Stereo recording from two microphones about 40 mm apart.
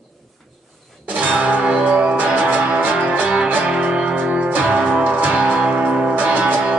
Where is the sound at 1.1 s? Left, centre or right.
Right.